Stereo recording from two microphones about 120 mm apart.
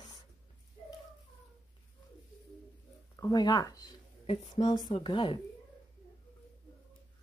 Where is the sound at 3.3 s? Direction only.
35° left (ahead or behind).